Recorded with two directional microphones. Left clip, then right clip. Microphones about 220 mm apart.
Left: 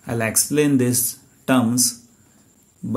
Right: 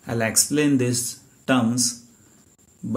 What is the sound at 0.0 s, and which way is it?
Speech, 25° left (ahead or behind).